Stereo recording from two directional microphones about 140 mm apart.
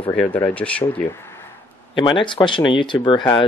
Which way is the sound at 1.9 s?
35° left (ahead or behind).